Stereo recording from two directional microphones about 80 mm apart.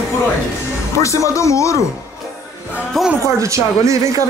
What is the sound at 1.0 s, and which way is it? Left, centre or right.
Speech, left.